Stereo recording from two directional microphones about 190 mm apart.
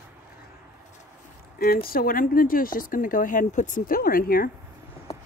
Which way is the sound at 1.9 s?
50° left (ahead or behind).